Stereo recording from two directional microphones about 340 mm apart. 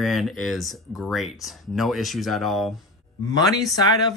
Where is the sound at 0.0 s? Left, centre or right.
Centre.